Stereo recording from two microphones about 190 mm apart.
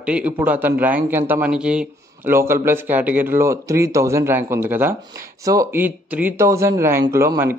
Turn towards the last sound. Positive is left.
turn(degrees=-15)  # may be behind; listen again after turning